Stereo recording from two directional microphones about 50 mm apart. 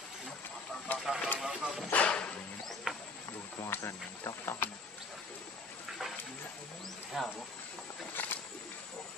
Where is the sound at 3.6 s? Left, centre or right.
Left.